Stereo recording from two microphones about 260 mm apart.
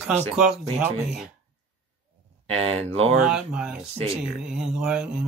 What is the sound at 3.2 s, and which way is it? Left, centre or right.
Speech, centre.